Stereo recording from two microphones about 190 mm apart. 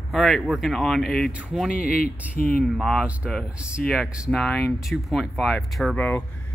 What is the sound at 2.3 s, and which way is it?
Speech, 50° left (ahead or behind).